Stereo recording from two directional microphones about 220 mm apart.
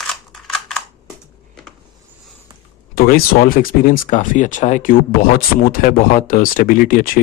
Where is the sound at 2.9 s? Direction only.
40° left (ahead or behind).